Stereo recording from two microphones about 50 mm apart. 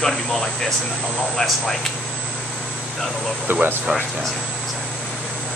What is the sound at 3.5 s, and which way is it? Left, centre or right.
Speech, right.